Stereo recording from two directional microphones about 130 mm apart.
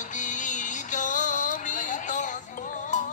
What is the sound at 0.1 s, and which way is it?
Music, 75° left (ahead or behind).